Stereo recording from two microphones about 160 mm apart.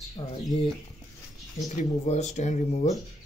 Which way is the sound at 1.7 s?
45° left (ahead or behind).